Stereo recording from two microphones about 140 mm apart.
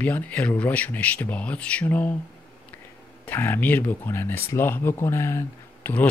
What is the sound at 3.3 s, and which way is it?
Speech, 15° left (ahead or behind).